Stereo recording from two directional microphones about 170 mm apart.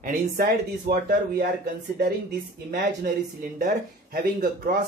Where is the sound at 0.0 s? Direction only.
60° right (ahead or behind).